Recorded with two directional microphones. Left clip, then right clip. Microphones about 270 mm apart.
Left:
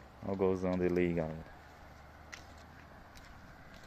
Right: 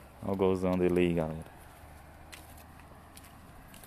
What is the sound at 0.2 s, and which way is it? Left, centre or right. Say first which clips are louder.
Speech: right 4 dB; centre.